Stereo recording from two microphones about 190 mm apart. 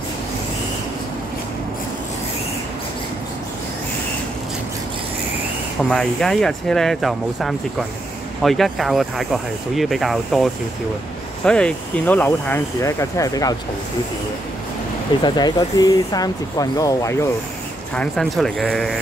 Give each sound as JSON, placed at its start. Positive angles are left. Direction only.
{"t": 5.9, "sound": "speech", "side_deg": 5}
{"t": 15.2, "sound": "speech", "side_deg": 20}
{"t": 17.9, "sound": "speech", "side_deg": 5}